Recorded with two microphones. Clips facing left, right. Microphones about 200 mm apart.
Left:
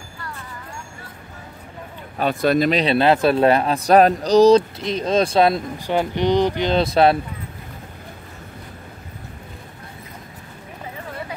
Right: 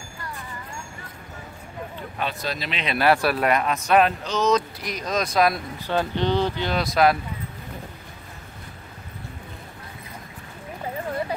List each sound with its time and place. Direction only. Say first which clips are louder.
2.1 s speech: left 12 dB; 50° left (ahead or behind)
2.7 s speech: left 5 dB; 30° left (ahead or behind)
5.8 s speech: left 3 dB; 15° left (ahead or behind)